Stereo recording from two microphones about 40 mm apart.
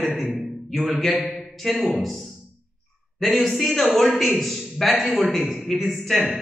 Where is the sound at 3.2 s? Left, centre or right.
Centre.